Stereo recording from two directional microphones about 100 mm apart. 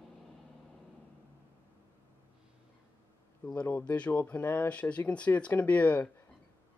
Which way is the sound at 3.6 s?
15° left (ahead or behind).